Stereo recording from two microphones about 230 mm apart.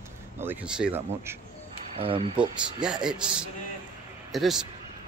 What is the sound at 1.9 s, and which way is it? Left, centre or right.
Speech, right.